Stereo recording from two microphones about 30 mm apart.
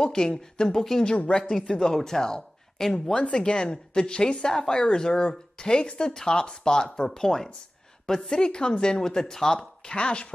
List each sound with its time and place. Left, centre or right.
0.0 s a woman's voice: left
1.3 s a woman's voice: left
3.1 s a woman's voice: left; by 9.6 s centre
9.9 s speech: left